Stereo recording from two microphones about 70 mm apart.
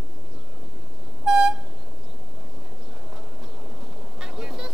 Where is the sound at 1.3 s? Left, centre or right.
Centre.